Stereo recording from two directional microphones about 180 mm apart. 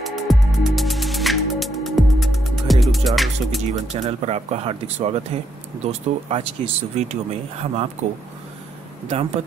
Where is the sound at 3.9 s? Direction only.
35° right (ahead or behind).